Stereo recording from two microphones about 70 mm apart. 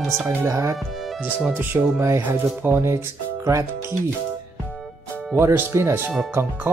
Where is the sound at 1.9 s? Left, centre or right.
Right.